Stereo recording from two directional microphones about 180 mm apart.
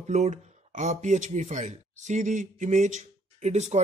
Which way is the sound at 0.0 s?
40° right (ahead or behind).